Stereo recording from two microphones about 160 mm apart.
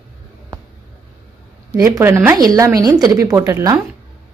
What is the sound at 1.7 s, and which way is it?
A woman's voice, 20° right (ahead or behind).